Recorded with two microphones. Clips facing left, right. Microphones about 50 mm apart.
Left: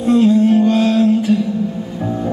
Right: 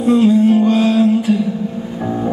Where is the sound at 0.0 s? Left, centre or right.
Centre.